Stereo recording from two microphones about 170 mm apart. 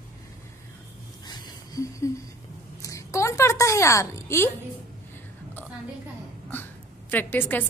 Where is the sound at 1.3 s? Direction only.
25° left (ahead or behind).